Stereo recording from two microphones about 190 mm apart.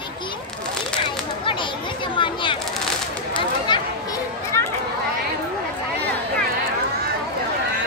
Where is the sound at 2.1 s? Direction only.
25° left (ahead or behind).